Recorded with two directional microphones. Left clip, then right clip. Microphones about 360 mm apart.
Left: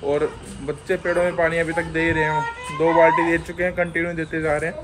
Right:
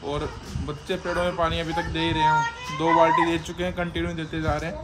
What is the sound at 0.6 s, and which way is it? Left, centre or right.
Speech, centre.